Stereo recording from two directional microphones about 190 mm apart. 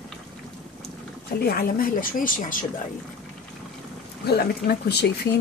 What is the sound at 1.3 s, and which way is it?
Speech, 55° left (ahead or behind).